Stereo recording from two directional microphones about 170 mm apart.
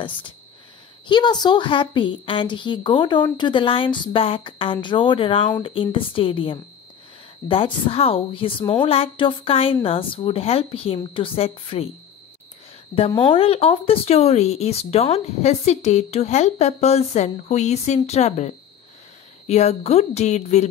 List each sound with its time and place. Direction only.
1.0 s a woman's voice: 25° left (ahead or behind)
12.9 s speech: 30° left (ahead or behind)